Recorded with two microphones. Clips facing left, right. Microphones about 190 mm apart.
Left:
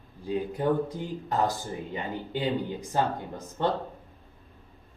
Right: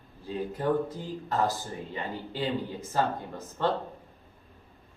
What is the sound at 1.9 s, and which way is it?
Speech, 20° left (ahead or behind).